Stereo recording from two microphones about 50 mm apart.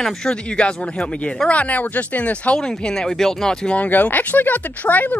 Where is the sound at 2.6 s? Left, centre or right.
Centre.